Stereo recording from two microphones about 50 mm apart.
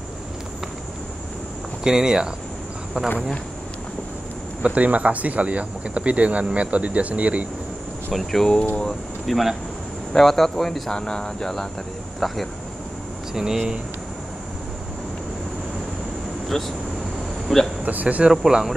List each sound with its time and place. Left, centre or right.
1.9 s speech: centre
4.6 s speech: right
8.1 s speech: centre
12.2 s speech: centre
13.3 s speech: centre
16.4 s speech: centre
18.0 s speech: right
18.3 s speech: centre